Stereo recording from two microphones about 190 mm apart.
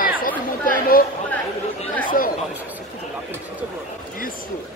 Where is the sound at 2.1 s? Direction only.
45° left (ahead or behind).